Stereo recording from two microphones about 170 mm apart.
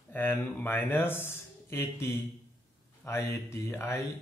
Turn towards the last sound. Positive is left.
turn(degrees=15)  # may be behind; listen again after turning